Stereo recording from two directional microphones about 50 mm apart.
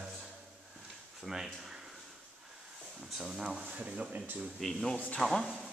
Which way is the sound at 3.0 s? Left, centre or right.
Centre.